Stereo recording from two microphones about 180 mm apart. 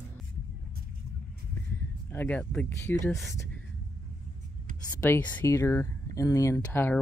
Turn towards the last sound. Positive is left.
turn(degrees=15)  # may be behind; listen again after turning